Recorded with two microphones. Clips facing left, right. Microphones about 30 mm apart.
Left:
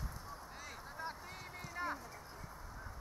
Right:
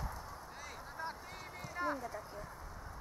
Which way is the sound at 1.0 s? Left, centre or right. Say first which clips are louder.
Right 2 dB; centre.